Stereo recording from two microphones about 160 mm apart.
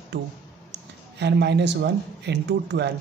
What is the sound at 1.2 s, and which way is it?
Speech, 90° right.